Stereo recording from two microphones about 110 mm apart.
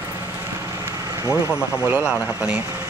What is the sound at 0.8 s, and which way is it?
Vehicle, 30° right (ahead or behind).